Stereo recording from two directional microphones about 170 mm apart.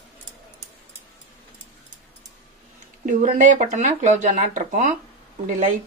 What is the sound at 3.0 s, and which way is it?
Speech, 45° right (ahead or behind).